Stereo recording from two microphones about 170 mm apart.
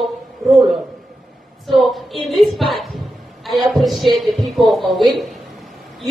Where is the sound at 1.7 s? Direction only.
Centre (ahead or behind).